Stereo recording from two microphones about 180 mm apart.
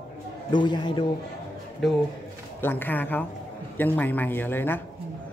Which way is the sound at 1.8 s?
Centre (ahead or behind).